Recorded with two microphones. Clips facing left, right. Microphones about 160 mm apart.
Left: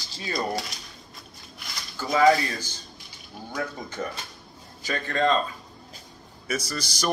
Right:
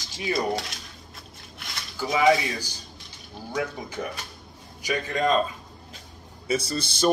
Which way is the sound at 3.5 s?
10° right (ahead or behind).